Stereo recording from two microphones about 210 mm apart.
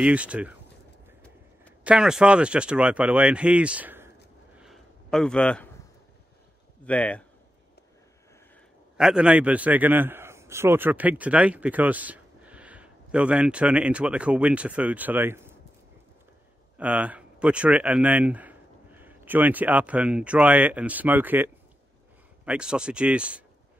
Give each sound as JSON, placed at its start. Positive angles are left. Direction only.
{"t": 0.0, "sound": "speech", "side_deg": -5}
{"t": 1.9, "sound": "speech", "side_deg": -5}
{"t": 4.6, "sound": "a sound", "side_deg": 0}
{"t": 6.9, "sound": "speech", "side_deg": 5}
{"t": 8.9, "sound": "a man's voice", "side_deg": -5}
{"t": 16.7, "sound": "speech", "side_deg": -5}